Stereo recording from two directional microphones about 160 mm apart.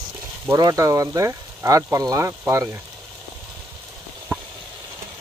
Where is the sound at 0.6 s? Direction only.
20° right (ahead or behind).